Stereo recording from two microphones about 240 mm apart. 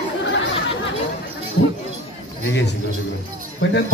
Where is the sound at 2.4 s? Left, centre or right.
Left.